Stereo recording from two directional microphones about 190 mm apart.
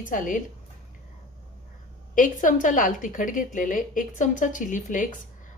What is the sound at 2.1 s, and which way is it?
Speech, 45° left (ahead or behind).